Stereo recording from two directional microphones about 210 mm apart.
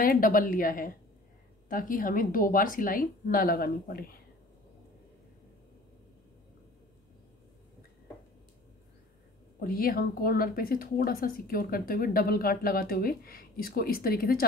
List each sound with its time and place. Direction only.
0.0 s a woman's voice: 40° left (ahead or behind)
9.6 s a woman's voice: 45° left (ahead or behind)